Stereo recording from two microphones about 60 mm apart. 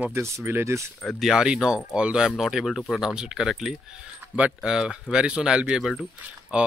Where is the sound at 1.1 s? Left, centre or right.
Centre.